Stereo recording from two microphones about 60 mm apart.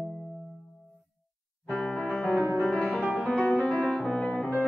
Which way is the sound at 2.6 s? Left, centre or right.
Centre.